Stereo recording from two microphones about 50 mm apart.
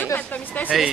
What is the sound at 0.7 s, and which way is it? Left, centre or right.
Speech, centre.